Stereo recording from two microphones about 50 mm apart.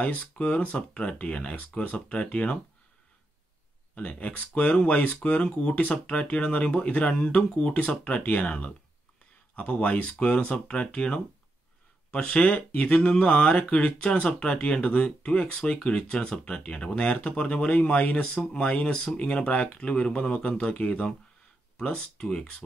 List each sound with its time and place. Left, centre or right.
0.0 s speech: left
3.9 s speech: left
12.4 s speech: left
15.5 s speech: centre
18.3 s speech: centre
18.6 s speech: left
21.9 s speech: centre